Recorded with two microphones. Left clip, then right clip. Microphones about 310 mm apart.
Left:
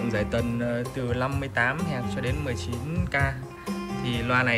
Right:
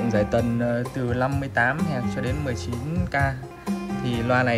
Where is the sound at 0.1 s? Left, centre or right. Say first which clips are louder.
Right 6 dB; centre.